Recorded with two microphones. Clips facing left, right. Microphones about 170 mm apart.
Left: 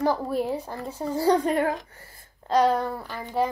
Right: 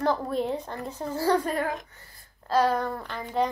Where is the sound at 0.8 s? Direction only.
10° left (ahead or behind); by 2.2 s 30° left (ahead or behind).